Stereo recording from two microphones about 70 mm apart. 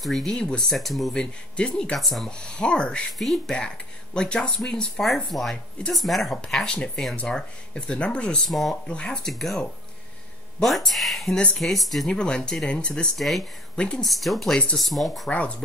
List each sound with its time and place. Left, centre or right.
0.0 s speech: centre
1.2 s speech: centre
2.0 s speech: centre
2.2 s speech: centre
3.1 s speech: centre
3.5 s speech: centre
8.4 s speech: centre
8.8 s speech: centre
10.6 s speech: centre
12.1 s speech: centre
14.0 s speech: centre
14.5 s speech: centre
14.8 s speech: centre
15.2 s speech: centre